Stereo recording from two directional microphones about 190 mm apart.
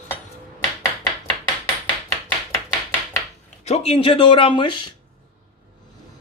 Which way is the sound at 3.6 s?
35° left (ahead or behind).